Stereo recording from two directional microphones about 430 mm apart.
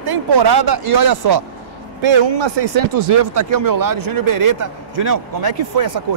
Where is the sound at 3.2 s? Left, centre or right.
Right.